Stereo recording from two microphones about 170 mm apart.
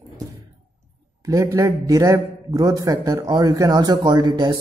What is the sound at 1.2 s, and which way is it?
A man's voice, 20° right (ahead or behind).